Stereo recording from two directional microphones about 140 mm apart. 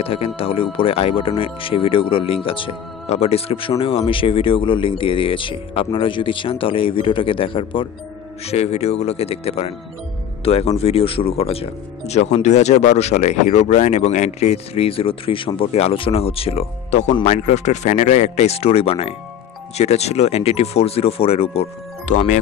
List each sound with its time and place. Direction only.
0.0 s speech: 45° left (ahead or behind)
8.5 s speech: 50° left (ahead or behind)